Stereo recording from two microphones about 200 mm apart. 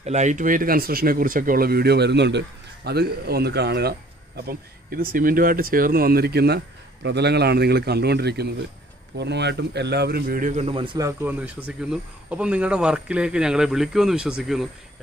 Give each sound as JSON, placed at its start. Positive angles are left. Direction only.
{"t": 0.0, "sound": "speech", "side_deg": -35}
{"t": 4.5, "sound": "a man's voice", "side_deg": -45}